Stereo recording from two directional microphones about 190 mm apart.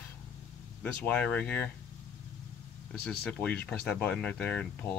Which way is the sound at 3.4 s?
5° left (ahead or behind).